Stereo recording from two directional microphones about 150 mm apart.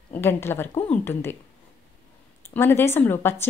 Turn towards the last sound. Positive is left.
turn(degrees=15)  # may be behind; listen again after turning